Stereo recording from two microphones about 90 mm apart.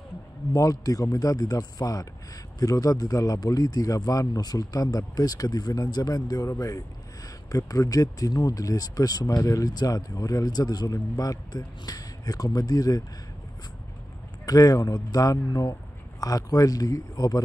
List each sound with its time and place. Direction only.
0.5 s speech: 40° left (ahead or behind)
14.4 s speech: 40° left (ahead or behind)